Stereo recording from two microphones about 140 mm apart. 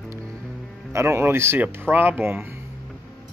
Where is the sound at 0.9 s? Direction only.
20° right (ahead or behind).